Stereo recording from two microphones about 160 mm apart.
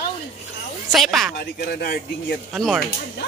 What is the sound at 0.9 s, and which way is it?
Speech, centre (ahead or behind).